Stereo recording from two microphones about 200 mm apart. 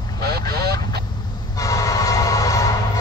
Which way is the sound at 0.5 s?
55° right (ahead or behind).